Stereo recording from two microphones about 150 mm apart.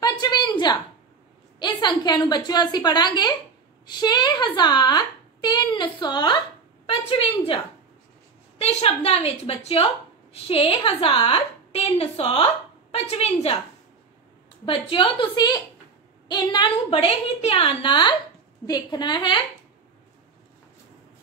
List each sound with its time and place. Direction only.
0.0 s a sound: 25° left (ahead or behind)
1.6 s a woman's voice: 30° left (ahead or behind)
8.5 s a woman's voice: 40° left (ahead or behind)
14.6 s a woman's voice: 35° left (ahead or behind)